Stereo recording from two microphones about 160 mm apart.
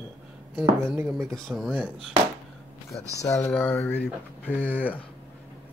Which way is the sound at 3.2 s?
20° left (ahead or behind).